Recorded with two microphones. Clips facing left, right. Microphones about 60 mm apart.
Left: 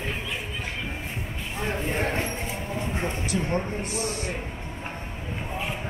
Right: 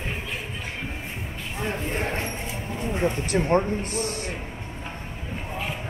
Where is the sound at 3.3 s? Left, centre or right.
Right.